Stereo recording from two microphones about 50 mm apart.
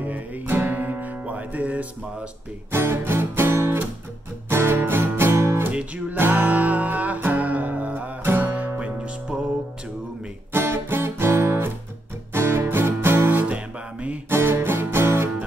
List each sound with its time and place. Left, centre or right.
0.5 s music: right
1.2 s music: right
2.7 s music: right
5.7 s music: right
6.1 s music: right
8.2 s music: right
8.7 s music: right
10.5 s music: right